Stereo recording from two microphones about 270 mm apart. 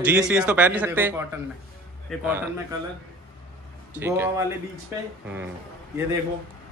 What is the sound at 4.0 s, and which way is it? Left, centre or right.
Speech, centre.